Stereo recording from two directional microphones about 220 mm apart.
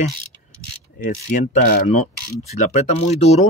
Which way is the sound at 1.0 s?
40° left (ahead or behind).